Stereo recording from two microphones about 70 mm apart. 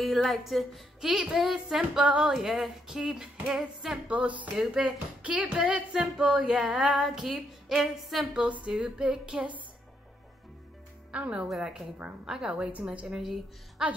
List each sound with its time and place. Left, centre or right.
0.0 s a woman's voice: centre
4.1 s speech: right
4.6 s speech: centre
8.3 s speech: centre
11.1 s speech: centre